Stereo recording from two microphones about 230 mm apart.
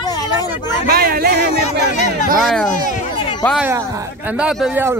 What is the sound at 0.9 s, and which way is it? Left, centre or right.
Speech, right.